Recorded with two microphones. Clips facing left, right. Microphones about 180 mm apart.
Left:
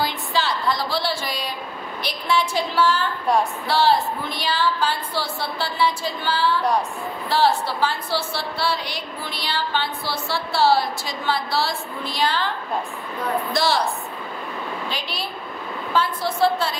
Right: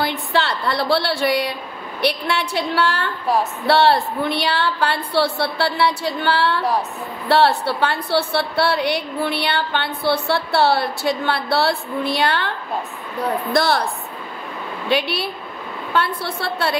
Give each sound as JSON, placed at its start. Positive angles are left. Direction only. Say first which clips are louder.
{"t": 0.0, "sound": "a woman's voice", "louder": "right 3 dB", "side_deg": -65}
{"t": 14.9, "sound": "a woman's voice", "louder": "right 9 dB", "side_deg": -65}